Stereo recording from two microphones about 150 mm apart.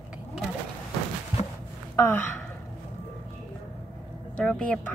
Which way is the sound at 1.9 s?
15° left (ahead or behind).